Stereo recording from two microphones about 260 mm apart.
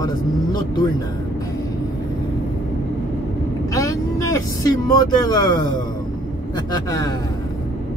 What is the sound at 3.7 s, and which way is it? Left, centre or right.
Speech, centre.